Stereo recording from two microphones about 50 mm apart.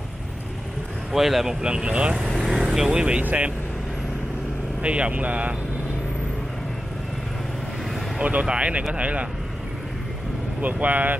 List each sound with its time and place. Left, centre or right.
1.1 s speech: centre
1.6 s speech: centre
2.1 s vehicle: centre
2.6 s speech: centre
3.2 s speech: right
4.8 s speech: right
8.2 s speech: right
10.6 s speech: right